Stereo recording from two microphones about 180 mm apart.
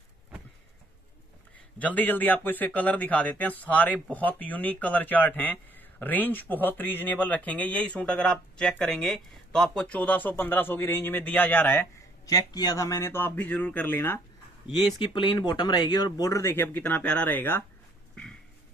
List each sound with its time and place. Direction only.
1.8 s speech: 10° left (ahead or behind)
14.7 s speech: 25° left (ahead or behind)